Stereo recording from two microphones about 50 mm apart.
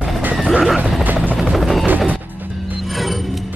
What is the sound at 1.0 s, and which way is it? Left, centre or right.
Helicopter, right.